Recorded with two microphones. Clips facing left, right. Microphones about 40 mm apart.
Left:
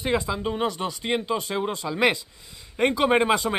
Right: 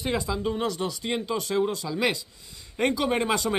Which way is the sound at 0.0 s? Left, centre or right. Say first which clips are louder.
Left 2 dB; centre.